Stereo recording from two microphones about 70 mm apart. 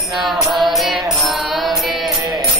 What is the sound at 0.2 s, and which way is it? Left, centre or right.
Mantra, centre.